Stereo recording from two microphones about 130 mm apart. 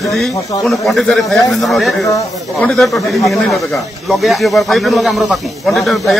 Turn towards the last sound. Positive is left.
turn(degrees=0)  # may be behind; listen again after turning